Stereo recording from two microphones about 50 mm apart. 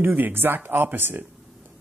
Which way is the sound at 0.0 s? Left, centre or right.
Right.